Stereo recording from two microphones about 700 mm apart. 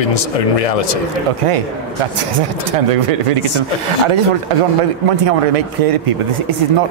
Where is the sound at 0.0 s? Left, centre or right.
Left.